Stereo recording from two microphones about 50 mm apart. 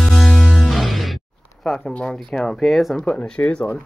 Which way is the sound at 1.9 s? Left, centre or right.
Left.